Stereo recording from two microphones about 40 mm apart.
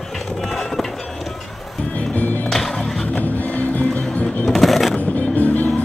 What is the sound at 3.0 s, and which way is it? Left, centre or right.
Music, left.